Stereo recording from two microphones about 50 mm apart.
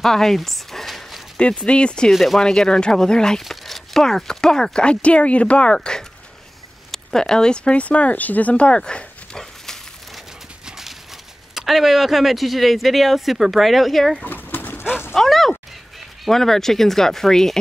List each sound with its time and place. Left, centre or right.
0.0 s a sound: centre
1.4 s speech: centre
2.1 s speech: centre
2.4 s speech: centre
6.9 s speech: centre
11.5 s speech: centre
14.2 s pigeon: left
15.1 s speech: centre